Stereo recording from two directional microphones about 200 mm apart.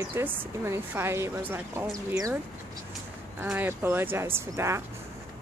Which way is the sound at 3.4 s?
10° right (ahead or behind).